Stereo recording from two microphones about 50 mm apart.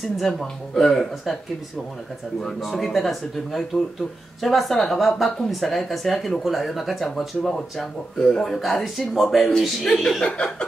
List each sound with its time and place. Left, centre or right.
0.3 s speech: centre
2.4 s a woman's voice: centre
10.2 s speech: centre